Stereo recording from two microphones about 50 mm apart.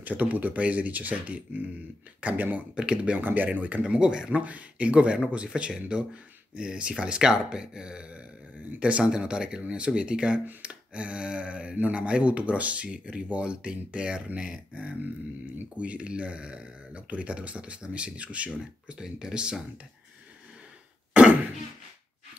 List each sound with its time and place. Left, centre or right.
0.0 s speech: right
2.7 s speech: centre
3.2 s speech: right; by 4.3 s centre
4.3 s speech: right
18.6 s speech: centre
21.1 s cough: right